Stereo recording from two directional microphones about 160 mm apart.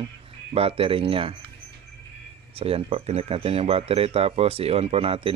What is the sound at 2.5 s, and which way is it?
Speech, 35° right (ahead or behind).